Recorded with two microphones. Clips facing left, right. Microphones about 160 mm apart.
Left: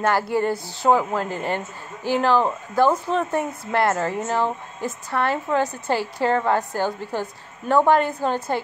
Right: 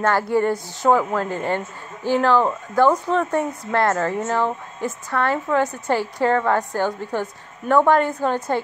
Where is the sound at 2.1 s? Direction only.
15° left (ahead or behind).